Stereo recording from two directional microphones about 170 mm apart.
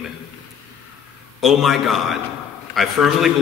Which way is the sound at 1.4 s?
Centre (ahead or behind).